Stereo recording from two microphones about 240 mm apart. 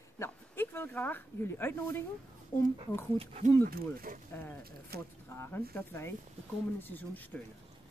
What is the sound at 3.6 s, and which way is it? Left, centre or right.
Speech, right.